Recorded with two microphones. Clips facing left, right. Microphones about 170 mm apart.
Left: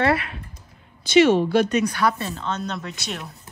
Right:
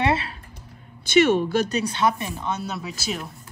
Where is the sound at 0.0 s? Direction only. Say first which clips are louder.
Left 2 dB; 25° right (ahead or behind).